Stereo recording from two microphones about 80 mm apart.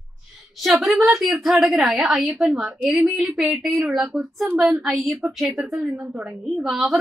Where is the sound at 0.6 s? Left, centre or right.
Centre.